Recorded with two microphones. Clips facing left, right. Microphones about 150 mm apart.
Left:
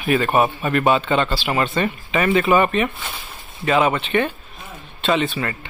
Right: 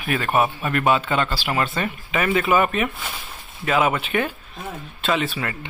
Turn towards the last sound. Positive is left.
turn(degrees=-5)  # may be behind; listen again after turning